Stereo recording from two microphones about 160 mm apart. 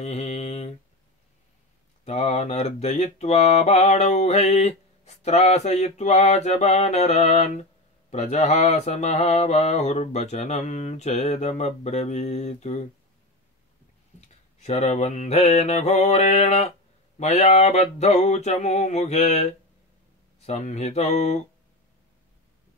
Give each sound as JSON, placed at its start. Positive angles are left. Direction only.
{"t": 0.0, "sound": "mantra", "side_deg": 45}
{"t": 2.0, "sound": "mantra", "side_deg": 40}
{"t": 14.6, "sound": "mantra", "side_deg": 45}